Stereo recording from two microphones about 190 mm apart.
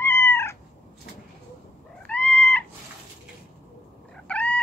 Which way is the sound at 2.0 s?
5° left (ahead or behind).